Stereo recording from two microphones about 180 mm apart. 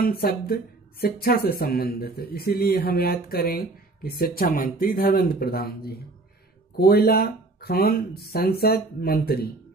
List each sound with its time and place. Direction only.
0.0 s speech: 55° left (ahead or behind)